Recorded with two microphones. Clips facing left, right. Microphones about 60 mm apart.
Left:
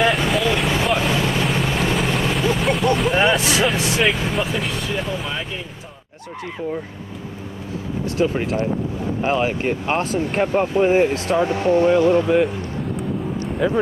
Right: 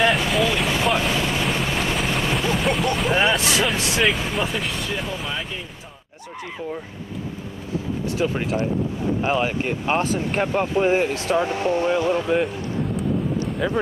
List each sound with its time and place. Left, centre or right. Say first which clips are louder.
0.0 s vehicle: left 1 dB; centre
9.2 s speech: left 3 dB; centre
9.5 s speech: left 3 dB; centre
9.8 s speech: right 2 dB; centre
11.5 s speech: left 5 dB; centre
11.9 s speech: left 5 dB; centre
13.6 s speech: left 6 dB; centre